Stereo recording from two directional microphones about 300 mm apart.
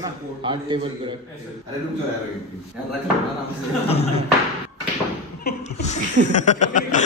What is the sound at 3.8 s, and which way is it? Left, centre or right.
Speech, centre.